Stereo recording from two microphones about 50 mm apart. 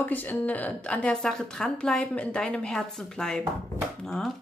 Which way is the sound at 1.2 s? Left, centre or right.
Centre.